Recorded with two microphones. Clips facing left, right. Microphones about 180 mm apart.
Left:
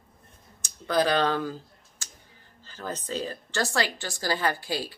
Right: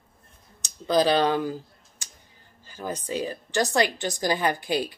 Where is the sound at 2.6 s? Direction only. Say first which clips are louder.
Right 3 dB; 10° right (ahead or behind).